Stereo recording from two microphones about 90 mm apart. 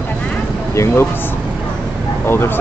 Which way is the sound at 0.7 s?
30° left (ahead or behind).